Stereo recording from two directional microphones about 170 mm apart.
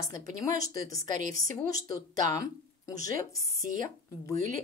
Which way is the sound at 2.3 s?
20° left (ahead or behind).